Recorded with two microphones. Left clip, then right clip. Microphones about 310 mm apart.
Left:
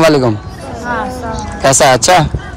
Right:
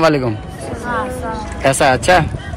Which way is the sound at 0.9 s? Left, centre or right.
Centre.